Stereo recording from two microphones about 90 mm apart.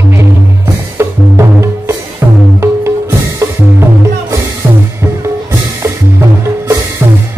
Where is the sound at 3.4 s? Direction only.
25° right (ahead or behind).